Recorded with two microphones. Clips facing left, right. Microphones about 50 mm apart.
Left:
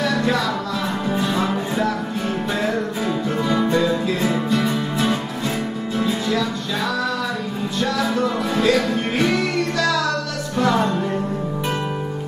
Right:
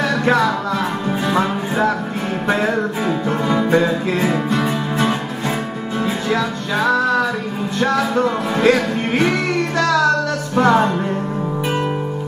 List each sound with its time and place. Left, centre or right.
0.0 s music: right
3.7 s music: right